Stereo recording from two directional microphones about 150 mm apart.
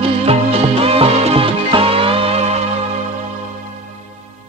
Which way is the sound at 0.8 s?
40° right (ahead or behind).